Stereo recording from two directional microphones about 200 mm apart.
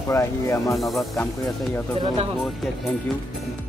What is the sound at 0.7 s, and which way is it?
Speech, centre (ahead or behind).